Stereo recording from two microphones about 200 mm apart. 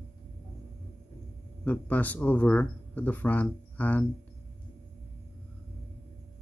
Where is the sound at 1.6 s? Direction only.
10° left (ahead or behind).